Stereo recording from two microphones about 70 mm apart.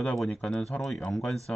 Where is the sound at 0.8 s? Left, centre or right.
Centre.